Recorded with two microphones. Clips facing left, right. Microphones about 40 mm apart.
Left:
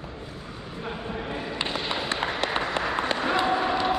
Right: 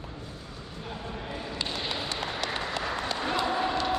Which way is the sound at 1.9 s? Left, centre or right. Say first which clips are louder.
Left 5 dB; left.